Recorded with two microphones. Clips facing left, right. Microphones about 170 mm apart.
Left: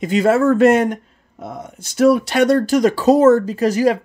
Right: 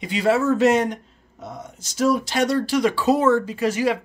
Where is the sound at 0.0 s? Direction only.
50° left (ahead or behind).